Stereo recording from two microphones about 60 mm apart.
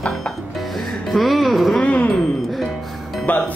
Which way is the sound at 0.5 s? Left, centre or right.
Centre.